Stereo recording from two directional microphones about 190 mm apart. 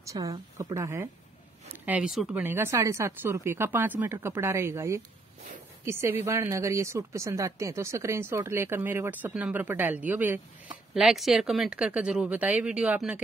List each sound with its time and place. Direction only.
0.0 s a woman's voice: 20° right (ahead or behind)
1.9 s a woman's voice: 5° right (ahead or behind)